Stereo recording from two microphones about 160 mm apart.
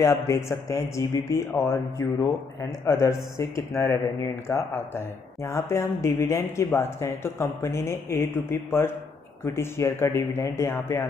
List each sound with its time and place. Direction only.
0.0 s speech: 20° left (ahead or behind)